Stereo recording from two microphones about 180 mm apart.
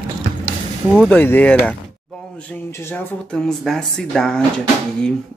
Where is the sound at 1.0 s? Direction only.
10° left (ahead or behind).